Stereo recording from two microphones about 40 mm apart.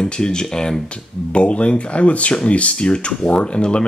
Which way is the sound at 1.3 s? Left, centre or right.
Left.